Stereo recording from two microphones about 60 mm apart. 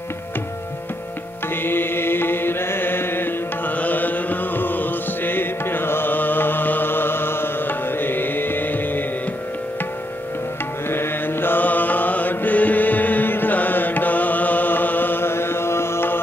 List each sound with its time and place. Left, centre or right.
1.6 s mantra: left
10.9 s mantra: left